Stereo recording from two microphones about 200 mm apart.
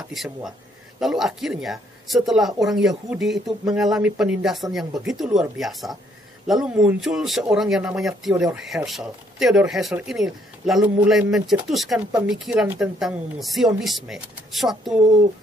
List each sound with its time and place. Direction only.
0.1 s speech: centre (ahead or behind)